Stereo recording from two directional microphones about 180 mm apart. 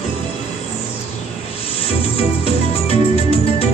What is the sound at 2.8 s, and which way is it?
Music, 35° left (ahead or behind).